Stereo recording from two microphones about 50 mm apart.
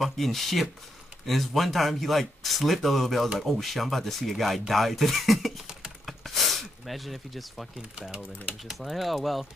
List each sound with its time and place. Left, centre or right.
0.0 s speech: centre
6.0 s a sound: centre
8.1 s speech: right
8.8 s speech: centre